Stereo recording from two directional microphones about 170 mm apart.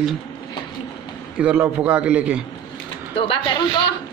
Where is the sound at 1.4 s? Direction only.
5° right (ahead or behind).